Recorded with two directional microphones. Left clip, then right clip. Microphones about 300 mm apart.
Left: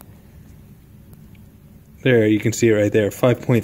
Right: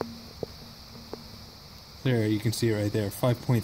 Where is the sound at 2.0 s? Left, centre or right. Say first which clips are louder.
Left 12 dB; centre.